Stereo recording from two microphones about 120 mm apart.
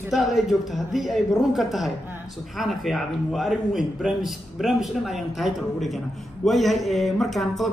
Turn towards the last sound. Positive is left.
turn(degrees=0)  # may be behind; listen again after turning